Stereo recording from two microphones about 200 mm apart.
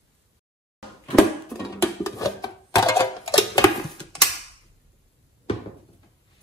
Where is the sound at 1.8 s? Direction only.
15° left (ahead or behind).